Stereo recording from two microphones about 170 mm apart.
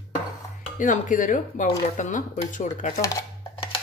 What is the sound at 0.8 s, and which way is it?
Speech, 50° left (ahead or behind).